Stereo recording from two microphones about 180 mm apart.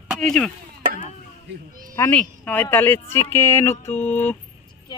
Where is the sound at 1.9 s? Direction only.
10° left (ahead or behind).